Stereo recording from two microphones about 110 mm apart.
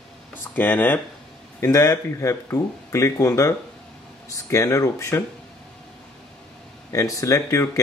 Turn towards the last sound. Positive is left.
turn(degrees=30)  # may be behind; listen again after turning